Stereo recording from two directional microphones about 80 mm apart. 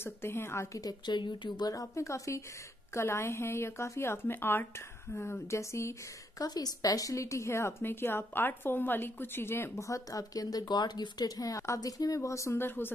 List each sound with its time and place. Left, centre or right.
0.0 s speech: left
0.7 s speech: left
1.7 s speech: left
6.4 s speech: left